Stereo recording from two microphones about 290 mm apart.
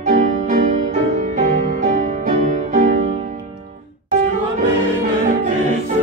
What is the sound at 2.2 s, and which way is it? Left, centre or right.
Music, right.